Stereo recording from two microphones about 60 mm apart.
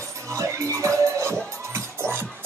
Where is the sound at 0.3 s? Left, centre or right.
Right.